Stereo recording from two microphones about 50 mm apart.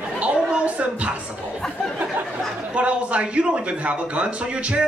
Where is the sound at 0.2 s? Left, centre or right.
Right.